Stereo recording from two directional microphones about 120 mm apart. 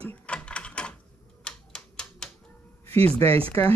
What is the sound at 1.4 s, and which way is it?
Typewriter, 5° left (ahead or behind).